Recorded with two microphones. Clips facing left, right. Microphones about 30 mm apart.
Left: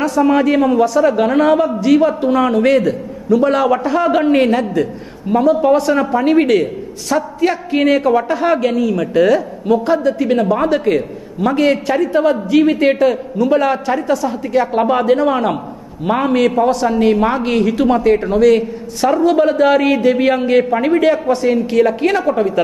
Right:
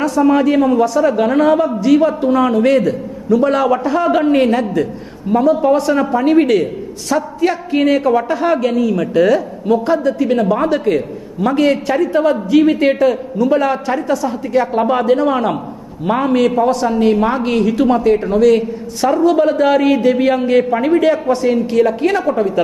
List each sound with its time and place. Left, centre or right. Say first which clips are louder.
0.2 s a man's voice: right 1 dB; centre
4.5 s a man's voice: even; centre
5.3 s a man's voice: even; left
5.8 s a man's voice: even; centre